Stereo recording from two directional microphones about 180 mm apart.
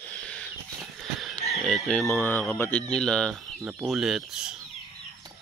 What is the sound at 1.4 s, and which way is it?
Speech, centre (ahead or behind).